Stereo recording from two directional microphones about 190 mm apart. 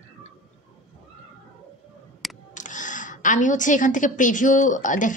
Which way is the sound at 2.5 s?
40° left (ahead or behind).